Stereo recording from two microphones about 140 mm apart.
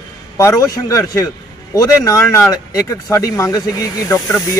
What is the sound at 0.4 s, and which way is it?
Speech, 25° left (ahead or behind).